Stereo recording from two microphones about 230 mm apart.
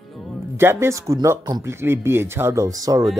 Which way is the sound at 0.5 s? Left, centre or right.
Centre.